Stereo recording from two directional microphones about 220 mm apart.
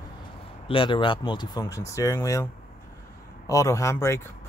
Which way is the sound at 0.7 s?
25° left (ahead or behind).